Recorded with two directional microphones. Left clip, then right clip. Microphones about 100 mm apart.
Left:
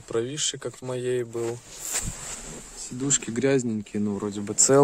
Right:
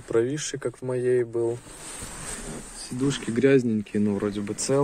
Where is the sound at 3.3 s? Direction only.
90° left.